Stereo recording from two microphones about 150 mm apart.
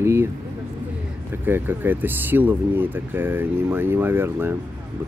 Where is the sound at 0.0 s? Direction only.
15° right (ahead or behind).